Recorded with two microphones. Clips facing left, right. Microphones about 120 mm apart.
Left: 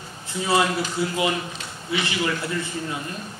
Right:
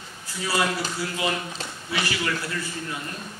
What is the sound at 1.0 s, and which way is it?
A man's voice, 25° left (ahead or behind).